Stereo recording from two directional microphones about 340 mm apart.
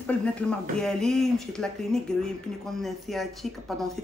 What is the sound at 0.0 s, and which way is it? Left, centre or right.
Speech, centre.